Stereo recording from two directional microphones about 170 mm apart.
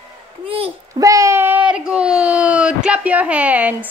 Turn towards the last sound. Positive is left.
turn(degrees=-10)  # may be behind; listen again after turning